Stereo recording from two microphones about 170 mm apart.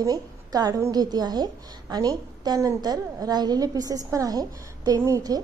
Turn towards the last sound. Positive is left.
turn(degrees=-20)  # may be behind; listen again after turning